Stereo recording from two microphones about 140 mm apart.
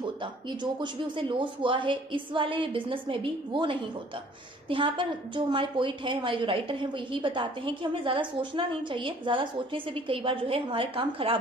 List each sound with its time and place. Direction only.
0.0 s a woman's voice: 35° right (ahead or behind)